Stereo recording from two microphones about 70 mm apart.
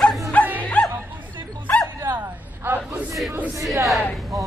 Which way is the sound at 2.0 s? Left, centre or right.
Right.